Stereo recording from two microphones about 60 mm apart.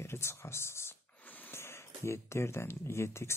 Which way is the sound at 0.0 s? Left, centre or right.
Left.